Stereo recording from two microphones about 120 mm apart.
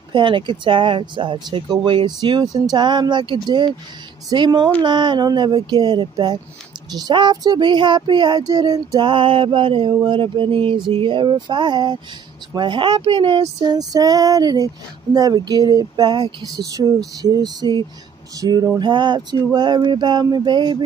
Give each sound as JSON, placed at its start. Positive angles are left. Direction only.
{"t": 0.1, "sound": "speech", "side_deg": -45}
{"t": 13.6, "sound": "speech", "side_deg": -35}